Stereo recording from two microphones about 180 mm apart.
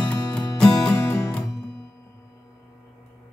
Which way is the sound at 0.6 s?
10° left (ahead or behind).